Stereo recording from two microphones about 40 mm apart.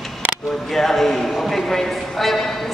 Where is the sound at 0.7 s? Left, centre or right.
Centre.